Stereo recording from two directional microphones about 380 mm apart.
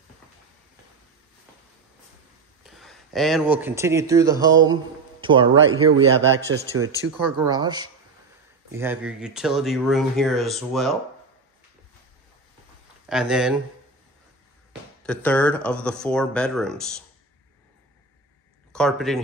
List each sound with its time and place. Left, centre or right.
2.6 s speech: centre
5.9 s a man's voice: right
7.4 s speech: centre
13.1 s speech: centre
14.7 s speech: centre
18.7 s speech: centre